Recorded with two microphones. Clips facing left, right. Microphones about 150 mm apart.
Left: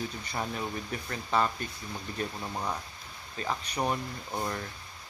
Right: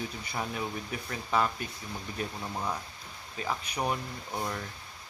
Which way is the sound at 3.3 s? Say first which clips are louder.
Left 1 dB; 10° right (ahead or behind).